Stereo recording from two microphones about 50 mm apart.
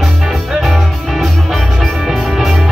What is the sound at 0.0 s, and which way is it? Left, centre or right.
Music, centre.